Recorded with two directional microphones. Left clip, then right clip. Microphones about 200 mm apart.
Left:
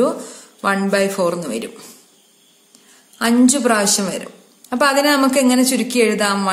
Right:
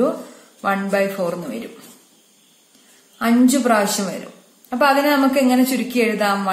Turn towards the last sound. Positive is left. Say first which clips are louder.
# left 2 dB
turn(degrees=30)  # may be behind; listen again after turning